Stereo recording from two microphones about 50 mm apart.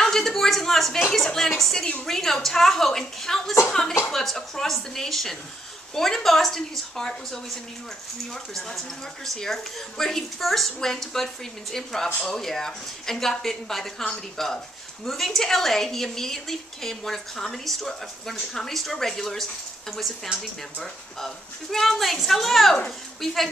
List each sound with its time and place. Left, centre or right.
0.0 s a woman's voice: centre
8.6 s a woman's voice: centre
20.8 s a woman's voice: centre